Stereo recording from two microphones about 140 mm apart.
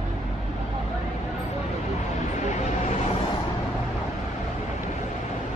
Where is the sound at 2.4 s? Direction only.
60° left (ahead or behind).